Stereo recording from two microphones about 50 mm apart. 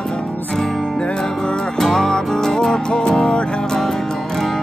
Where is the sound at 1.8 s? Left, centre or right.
Centre.